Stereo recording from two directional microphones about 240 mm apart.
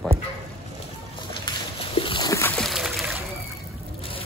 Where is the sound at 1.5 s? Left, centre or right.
Left.